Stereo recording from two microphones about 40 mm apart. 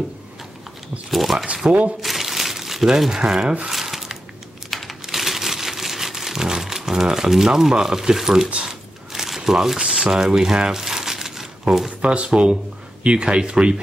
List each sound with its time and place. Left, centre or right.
1.1 s zipper: centre
1.7 s speech: right
2.0 s crumpling: centre
3.2 s speech: right
3.7 s a sound: centre
4.6 s crumpling: centre
8.6 s a sound: centre
10.2 s crumpling: centre
11.7 s speech: centre